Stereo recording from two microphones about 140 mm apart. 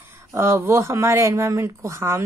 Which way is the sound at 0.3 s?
20° right (ahead or behind).